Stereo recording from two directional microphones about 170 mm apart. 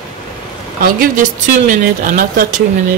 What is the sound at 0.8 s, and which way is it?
Speech, 55° right (ahead or behind).